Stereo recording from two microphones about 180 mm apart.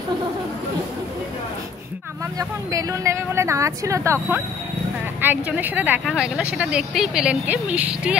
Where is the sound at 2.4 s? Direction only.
15° right (ahead or behind).